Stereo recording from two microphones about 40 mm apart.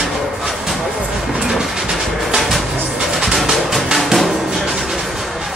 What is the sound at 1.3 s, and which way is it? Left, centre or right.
Train, centre.